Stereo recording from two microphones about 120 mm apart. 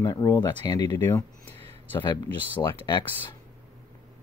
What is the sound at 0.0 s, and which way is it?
Speech, 30° left (ahead or behind).